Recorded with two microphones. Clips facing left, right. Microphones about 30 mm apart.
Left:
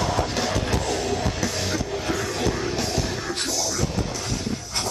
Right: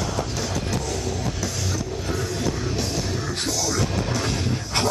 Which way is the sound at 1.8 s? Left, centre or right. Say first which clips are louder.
Left 2 dB; left.